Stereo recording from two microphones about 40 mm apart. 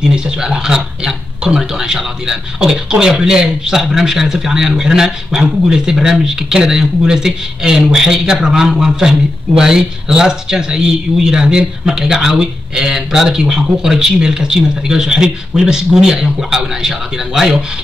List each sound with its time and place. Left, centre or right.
0.1 s speech: centre